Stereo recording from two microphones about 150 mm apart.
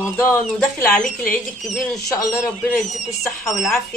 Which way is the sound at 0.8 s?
10° left (ahead or behind).